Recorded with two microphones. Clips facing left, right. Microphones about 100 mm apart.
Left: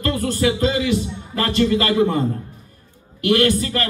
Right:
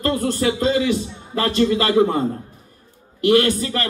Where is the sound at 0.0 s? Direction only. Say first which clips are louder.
Even; 30° right (ahead or behind).